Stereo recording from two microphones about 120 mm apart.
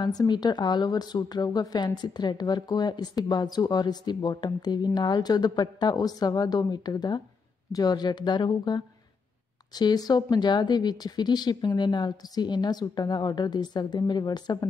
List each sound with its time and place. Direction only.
0.0 s speech: 35° left (ahead or behind)